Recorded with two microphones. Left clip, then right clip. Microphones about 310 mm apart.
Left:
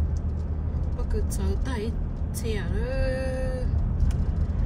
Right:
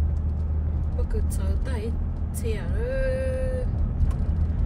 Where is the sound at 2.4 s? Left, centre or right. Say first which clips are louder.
Right 1 dB; centre.